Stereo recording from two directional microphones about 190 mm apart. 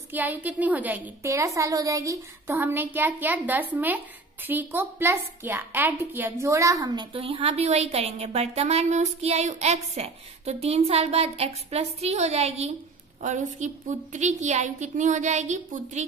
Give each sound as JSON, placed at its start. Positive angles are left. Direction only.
{"t": 0.1, "sound": "a woman's voice", "side_deg": -10}